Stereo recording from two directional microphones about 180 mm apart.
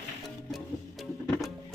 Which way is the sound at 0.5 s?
Centre (ahead or behind).